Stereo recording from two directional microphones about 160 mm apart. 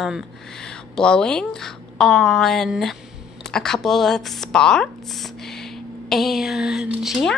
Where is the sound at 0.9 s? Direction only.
5° left (ahead or behind).